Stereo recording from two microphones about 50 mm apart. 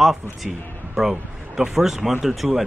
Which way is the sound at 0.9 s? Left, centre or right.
Centre.